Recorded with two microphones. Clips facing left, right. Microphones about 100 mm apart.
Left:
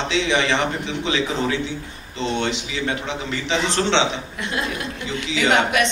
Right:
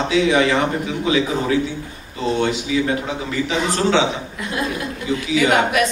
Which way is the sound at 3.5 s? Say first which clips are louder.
Right 1 dB; 25° left (ahead or behind).